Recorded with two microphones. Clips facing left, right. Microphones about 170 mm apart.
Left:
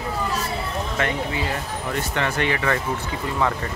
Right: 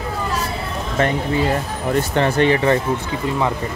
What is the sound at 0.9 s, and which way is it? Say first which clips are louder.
Speech: right 8 dB; 40° right (ahead or behind).